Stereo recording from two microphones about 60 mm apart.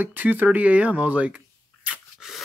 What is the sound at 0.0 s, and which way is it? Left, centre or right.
Speech, right.